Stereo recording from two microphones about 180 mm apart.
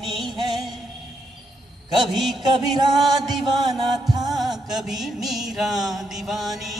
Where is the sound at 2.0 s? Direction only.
Centre (ahead or behind).